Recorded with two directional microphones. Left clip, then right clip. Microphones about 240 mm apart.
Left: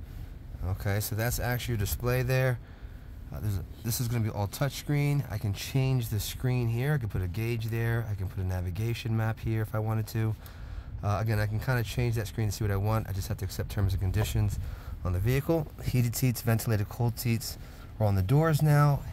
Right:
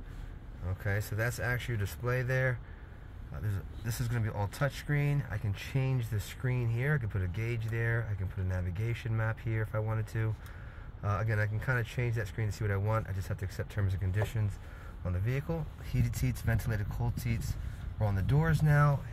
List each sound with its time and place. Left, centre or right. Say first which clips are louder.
0.7 s speech: left 2 dB; left